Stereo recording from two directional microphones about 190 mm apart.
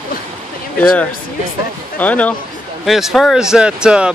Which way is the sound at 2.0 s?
10° left (ahead or behind).